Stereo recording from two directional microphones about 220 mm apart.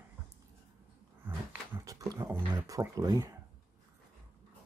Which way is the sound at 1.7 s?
15° right (ahead or behind).